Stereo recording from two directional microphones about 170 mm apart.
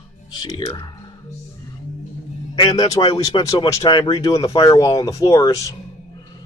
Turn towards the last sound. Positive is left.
turn(degrees=20)  # may be behind; listen again after turning